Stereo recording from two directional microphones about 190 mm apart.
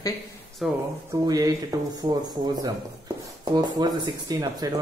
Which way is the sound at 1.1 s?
20° right (ahead or behind).